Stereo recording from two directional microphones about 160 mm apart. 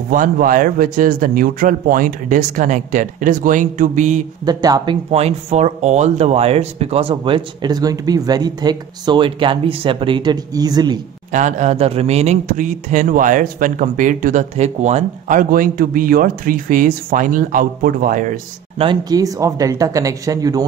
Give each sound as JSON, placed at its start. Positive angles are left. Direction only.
{"t": 0.1, "sound": "speech", "side_deg": -60}
{"t": 4.5, "sound": "speech", "side_deg": -25}
{"t": 5.1, "sound": "speech", "side_deg": -40}
{"t": 11.3, "sound": "speech", "side_deg": -50}
{"t": 18.8, "sound": "speech", "side_deg": -25}